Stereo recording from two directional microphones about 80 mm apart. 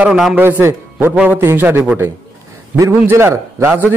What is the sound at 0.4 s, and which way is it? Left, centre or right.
A man's voice, right.